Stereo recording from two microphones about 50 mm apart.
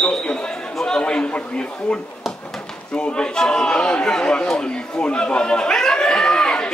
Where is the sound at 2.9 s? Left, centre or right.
Centre.